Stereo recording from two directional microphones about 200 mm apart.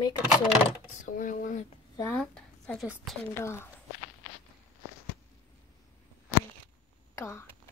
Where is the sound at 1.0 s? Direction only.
40° left (ahead or behind).